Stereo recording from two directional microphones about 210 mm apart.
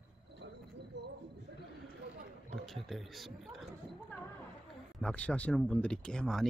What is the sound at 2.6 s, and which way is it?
Speech, centre (ahead or behind).